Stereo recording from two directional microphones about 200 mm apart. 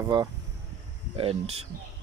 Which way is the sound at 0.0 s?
20° right (ahead or behind).